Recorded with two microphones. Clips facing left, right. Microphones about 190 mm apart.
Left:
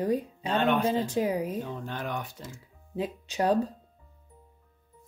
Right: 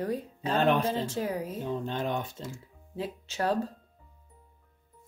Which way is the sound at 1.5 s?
20° right (ahead or behind).